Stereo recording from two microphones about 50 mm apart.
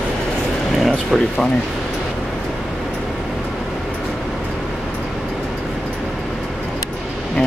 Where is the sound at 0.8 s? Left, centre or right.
Centre.